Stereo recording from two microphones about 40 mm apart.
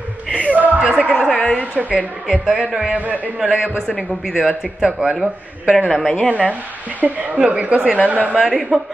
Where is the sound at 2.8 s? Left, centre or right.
Right.